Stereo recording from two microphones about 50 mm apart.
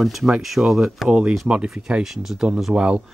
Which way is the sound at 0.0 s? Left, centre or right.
Centre.